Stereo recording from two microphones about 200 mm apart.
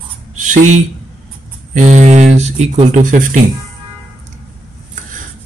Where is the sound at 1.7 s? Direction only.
35° right (ahead or behind).